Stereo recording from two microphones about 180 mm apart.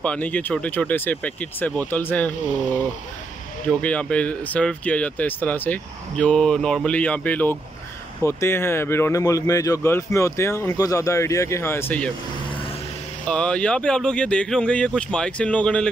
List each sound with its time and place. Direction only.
0.0 s speech: 5° left (ahead or behind)
13.3 s speech: 5° left (ahead or behind)